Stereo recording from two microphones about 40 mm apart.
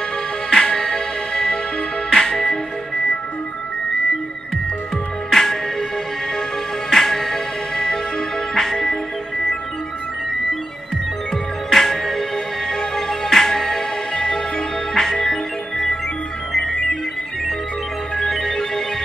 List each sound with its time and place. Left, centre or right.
0.5 s music: centre
5.3 s music: centre
6.9 s music: centre
11.7 s music: centre
18.2 s music: centre